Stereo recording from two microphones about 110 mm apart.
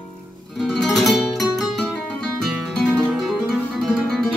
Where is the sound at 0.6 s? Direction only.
Centre (ahead or behind).